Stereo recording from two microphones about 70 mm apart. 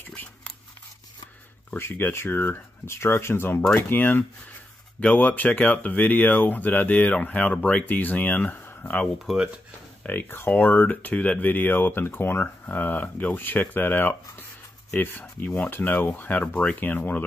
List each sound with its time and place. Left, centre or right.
0.0 s a sound: left
1.8 s speech: left
9.2 s speech: centre
10.0 s speech: left